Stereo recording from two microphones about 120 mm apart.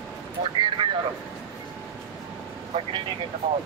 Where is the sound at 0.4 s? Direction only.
45° right (ahead or behind).